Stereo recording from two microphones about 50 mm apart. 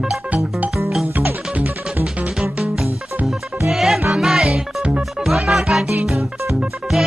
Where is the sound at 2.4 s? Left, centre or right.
Centre.